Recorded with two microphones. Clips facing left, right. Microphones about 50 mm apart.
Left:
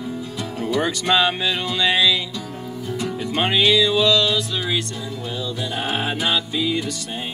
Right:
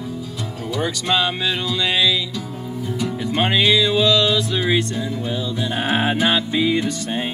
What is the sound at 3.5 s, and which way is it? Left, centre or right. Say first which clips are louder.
Music: left 1 dB; right.